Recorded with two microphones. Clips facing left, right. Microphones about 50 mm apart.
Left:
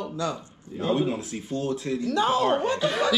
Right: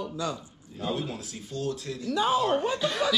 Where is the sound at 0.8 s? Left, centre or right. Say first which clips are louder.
Left 7 dB; left.